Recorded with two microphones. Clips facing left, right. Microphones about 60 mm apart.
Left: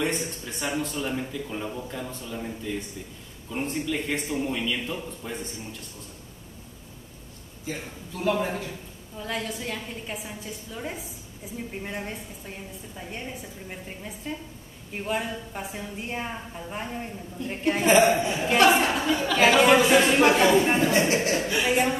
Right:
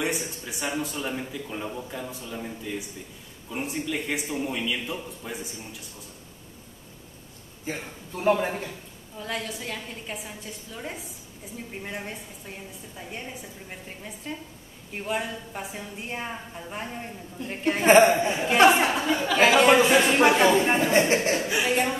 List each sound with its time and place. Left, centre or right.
0.0 s a woman's voice: centre
7.6 s a man's voice: right
9.2 s a woman's voice: centre
17.8 s a man's voice: right
18.3 s a woman's voice: centre
21.1 s speech: right
21.4 s a woman's voice: centre
21.6 s a woman's voice: centre